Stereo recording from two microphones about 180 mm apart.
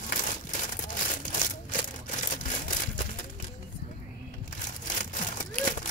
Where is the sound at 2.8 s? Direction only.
45° left (ahead or behind).